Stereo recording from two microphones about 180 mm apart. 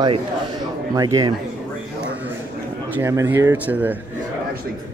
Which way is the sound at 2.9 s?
15° right (ahead or behind).